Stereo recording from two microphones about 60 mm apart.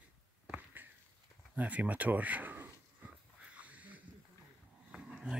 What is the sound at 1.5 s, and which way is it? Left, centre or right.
Speech, right.